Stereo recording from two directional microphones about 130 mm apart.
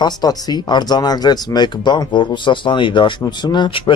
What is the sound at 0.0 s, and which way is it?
Speech, 30° left (ahead or behind).